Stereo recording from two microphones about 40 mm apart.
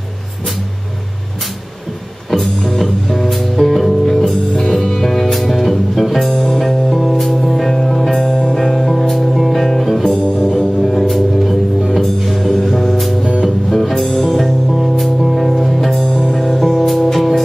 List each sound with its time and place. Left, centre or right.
2.3 s music: centre
13.2 s music: centre
13.7 s music: centre
14.3 s music: centre
16.0 s music: centre